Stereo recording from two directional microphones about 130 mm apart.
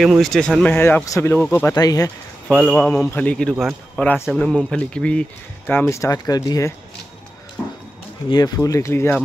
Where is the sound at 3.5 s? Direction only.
Centre (ahead or behind).